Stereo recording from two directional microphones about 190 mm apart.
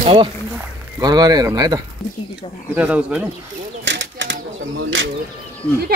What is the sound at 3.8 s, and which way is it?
Bird, 70° right (ahead or behind).